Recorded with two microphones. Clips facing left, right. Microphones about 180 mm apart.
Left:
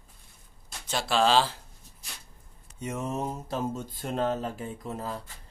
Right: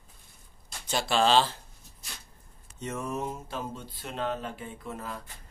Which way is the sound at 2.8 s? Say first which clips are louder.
Left 1 dB; 10° left (ahead or behind).